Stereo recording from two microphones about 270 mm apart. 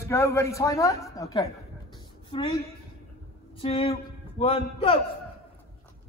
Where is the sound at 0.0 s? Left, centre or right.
Centre.